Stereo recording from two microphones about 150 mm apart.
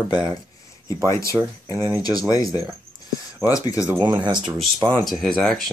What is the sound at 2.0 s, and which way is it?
Speech, 25° left (ahead or behind).